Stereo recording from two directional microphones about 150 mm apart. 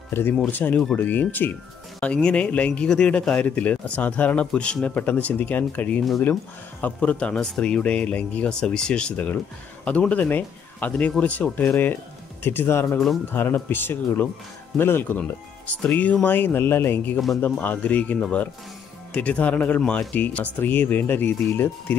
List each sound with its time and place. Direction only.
0.1 s speech: 15° left (ahead or behind)